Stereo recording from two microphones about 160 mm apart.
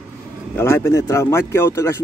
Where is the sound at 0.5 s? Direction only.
15° left (ahead or behind).